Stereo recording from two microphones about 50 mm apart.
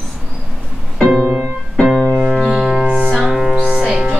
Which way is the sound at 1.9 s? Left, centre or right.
Centre.